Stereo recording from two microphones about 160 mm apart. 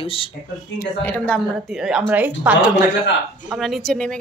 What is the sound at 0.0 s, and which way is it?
Speech, 35° left (ahead or behind).